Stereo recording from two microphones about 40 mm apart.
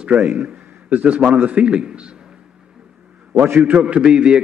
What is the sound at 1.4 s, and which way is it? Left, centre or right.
Speech, right.